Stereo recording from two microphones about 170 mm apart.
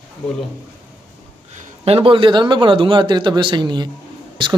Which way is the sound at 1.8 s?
35° right (ahead or behind).